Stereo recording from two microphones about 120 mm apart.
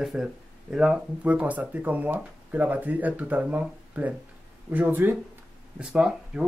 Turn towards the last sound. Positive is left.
turn(degrees=-5)  # may be behind; listen again after turning